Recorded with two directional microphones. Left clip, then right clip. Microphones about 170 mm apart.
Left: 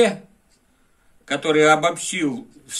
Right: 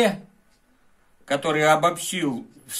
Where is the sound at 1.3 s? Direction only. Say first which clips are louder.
Left 3 dB; 50° right (ahead or behind).